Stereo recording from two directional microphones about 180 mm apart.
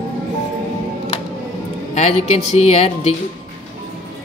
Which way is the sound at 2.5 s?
35° left (ahead or behind).